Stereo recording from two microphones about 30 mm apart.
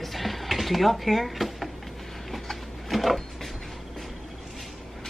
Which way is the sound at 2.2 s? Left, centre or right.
Centre.